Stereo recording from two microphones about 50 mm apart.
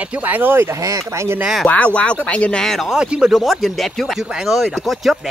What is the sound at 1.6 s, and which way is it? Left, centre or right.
Speech, left.